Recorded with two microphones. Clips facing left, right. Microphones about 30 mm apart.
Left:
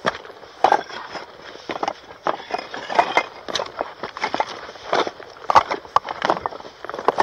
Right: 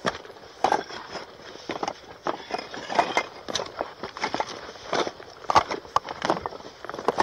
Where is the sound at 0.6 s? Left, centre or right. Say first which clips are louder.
Left 7 dB; centre.